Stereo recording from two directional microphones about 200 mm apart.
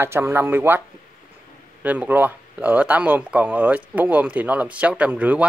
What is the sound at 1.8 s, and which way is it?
Speech, 5° right (ahead or behind).